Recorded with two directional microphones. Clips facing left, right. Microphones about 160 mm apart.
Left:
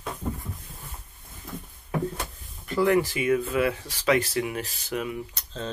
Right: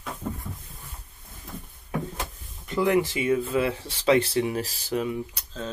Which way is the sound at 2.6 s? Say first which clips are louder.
Left 1 dB; 20° right (ahead or behind).